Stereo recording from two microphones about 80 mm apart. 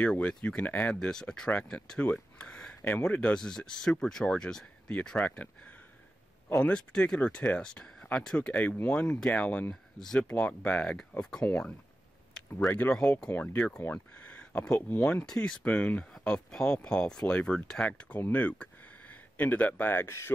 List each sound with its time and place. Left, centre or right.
0.0 s speech: centre
2.9 s speech: left
3.2 s speech: centre
6.5 s speech: centre
9.9 s speech: centre
12.4 s a sound: centre
12.9 s speech: centre
13.3 s speech: left
14.2 s speech: centre